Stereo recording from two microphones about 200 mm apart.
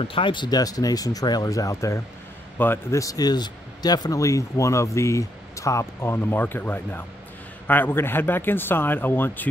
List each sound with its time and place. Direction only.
0.0 s speech: 25° left (ahead or behind); by 9.5 s 10° left (ahead or behind)